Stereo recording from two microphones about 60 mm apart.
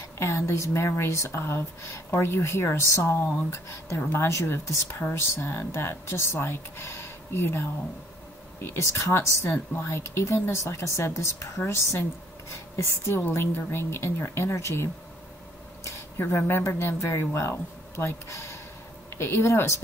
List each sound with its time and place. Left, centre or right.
0.2 s speech: left
5.1 s a woman's voice: left
16.2 s speech: left